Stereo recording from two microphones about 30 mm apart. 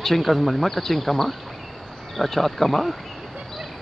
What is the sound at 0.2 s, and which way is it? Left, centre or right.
Speech, centre.